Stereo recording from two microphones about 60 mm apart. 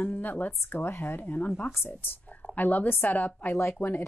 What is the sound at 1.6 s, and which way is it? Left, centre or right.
Speech, left.